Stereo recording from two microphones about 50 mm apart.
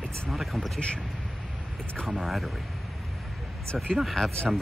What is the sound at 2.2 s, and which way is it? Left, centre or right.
Speech, centre.